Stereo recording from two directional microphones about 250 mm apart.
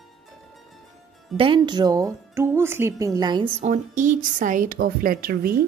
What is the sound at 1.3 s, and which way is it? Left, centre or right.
Speech, centre.